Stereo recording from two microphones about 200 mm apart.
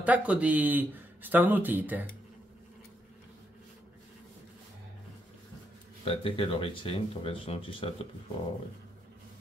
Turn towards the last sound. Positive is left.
turn(degrees=30)  # may be behind; listen again after turning